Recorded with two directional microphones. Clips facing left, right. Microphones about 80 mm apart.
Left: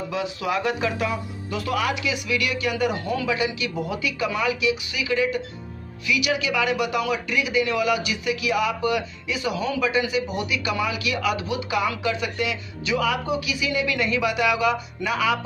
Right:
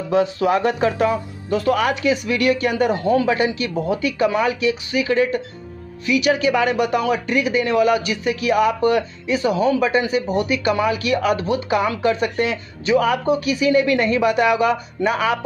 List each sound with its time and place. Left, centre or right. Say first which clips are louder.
0.1 s speech: right 10 dB; right